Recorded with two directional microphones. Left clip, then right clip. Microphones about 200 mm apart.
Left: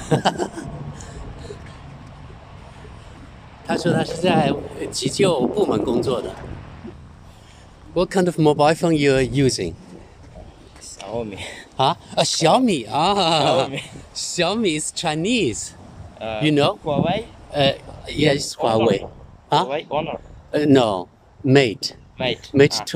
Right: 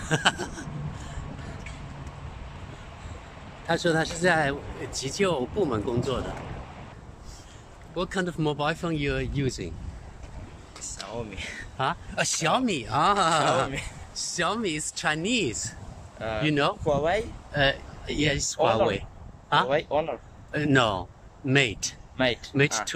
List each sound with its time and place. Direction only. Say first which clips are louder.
0.0 s a sound: left 5 dB; 25° left (ahead or behind)
3.6 s a man's voice: left 3 dB; 5° left (ahead or behind)
7.9 s speech: left 10 dB; 25° left (ahead or behind)
11.1 s a man's voice: left 9 dB; 20° left (ahead or behind)
16.8 s speech: left 3 dB; 5° left (ahead or behind)
17.5 s speech: left 6 dB; 15° left (ahead or behind)
19.7 s a man's voice: left 2 dB; 10° left (ahead or behind)
20.5 s a man's voice: left 7 dB; 25° left (ahead or behind)
22.1 s speech: left 1 dB; 15° left (ahead or behind)
22.5 s speech: left 9 dB; 30° left (ahead or behind)